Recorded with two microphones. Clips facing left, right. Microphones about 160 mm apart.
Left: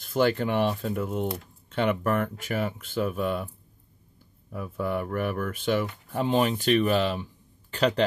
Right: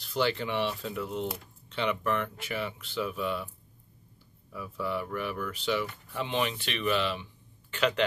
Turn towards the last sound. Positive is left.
turn(degrees=40)  # may be behind; listen again after turning